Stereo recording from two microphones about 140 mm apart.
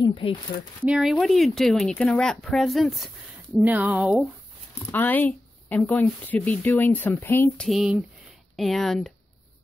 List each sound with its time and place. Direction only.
0.0 s speech: 40° left (ahead or behind)
0.8 s speech: 5° right (ahead or behind)
3.5 s speech: 10° right (ahead or behind)
4.9 s speech: 15° left (ahead or behind)
7.6 s speech: 5° right (ahead or behind)